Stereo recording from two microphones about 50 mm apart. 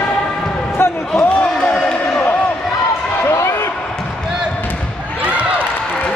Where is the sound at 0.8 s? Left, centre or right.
Left.